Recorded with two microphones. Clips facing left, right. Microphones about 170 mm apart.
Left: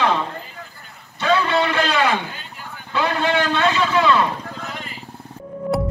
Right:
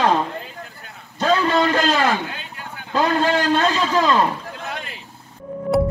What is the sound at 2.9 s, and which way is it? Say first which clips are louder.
A man's voice: right 2 dB; 40° right (ahead or behind).